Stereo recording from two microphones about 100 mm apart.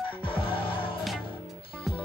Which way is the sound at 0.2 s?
60° left (ahead or behind).